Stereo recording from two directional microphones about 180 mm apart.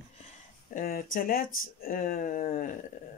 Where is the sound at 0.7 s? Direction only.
50° left (ahead or behind).